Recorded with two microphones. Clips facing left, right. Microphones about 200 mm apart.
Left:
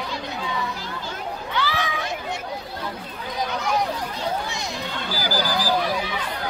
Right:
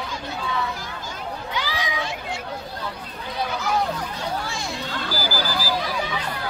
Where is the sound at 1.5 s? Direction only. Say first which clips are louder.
Left 4 dB; 15° right (ahead or behind).